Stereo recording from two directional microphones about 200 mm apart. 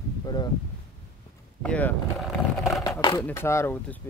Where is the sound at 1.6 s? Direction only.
5° left (ahead or behind).